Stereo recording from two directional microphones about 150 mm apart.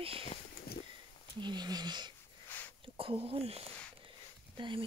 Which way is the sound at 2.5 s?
10° left (ahead or behind).